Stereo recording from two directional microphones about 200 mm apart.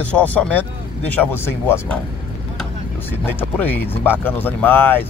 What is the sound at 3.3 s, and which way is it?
Speech, 10° left (ahead or behind).